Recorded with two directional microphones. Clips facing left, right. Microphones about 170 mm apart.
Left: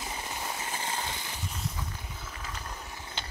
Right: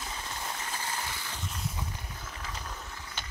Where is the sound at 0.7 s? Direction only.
20° left (ahead or behind).